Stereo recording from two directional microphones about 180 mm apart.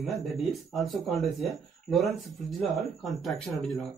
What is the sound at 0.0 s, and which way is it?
Speech, centre (ahead or behind).